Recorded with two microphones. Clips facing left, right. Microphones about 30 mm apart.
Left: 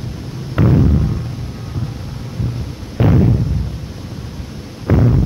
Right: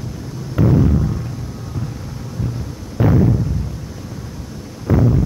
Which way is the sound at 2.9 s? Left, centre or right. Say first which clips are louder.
Left 1 dB; left.